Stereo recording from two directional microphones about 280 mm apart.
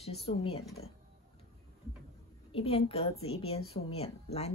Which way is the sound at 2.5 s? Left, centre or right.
Left.